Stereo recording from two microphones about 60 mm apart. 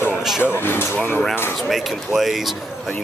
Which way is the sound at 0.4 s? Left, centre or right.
Left.